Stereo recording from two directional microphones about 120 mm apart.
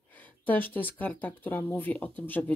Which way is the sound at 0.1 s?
15° left (ahead or behind).